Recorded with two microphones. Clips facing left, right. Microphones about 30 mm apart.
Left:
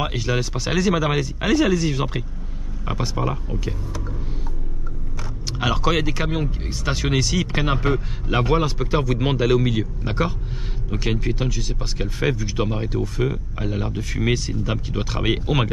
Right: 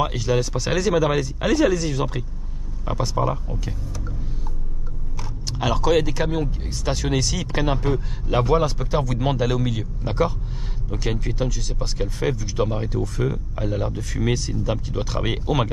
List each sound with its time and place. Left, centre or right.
0.0 s speech: centre
5.5 s speech: centre
7.7 s speech: left
8.3 s speech: centre